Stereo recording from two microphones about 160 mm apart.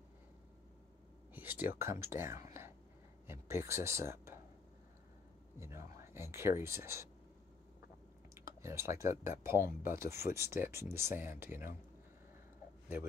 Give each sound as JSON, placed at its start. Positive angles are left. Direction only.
{"t": 1.3, "sound": "speech", "side_deg": -10}
{"t": 5.6, "sound": "speech", "side_deg": -15}
{"t": 8.4, "sound": "speech", "side_deg": -15}